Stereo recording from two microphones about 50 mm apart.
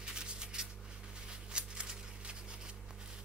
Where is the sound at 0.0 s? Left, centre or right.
Centre.